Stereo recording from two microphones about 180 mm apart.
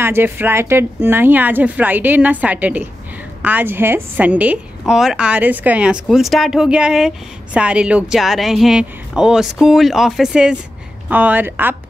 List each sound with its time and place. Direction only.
0.0 s a woman's voice: 10° right (ahead or behind)